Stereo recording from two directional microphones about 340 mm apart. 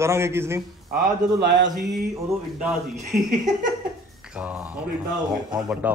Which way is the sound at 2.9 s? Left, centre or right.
Right.